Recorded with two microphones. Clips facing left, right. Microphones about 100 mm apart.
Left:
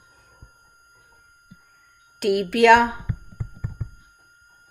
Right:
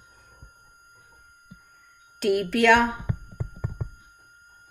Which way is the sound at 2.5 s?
60° left (ahead or behind).